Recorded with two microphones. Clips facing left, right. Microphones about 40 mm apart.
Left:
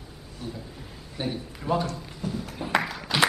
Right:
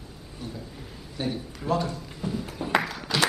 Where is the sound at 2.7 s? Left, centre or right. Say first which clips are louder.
Even; centre.